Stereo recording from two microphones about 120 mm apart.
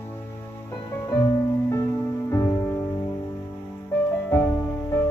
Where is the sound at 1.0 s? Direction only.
25° left (ahead or behind).